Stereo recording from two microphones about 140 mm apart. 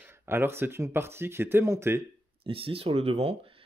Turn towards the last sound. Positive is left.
turn(degrees=-45)  # may be behind; listen again after turning